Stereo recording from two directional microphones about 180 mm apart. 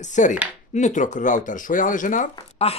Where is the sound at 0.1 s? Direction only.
45° left (ahead or behind).